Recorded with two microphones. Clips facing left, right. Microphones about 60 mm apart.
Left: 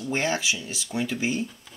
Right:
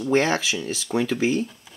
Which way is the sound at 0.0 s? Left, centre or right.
Right.